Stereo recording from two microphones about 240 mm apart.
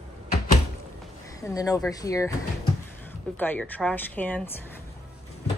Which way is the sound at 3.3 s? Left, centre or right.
Centre.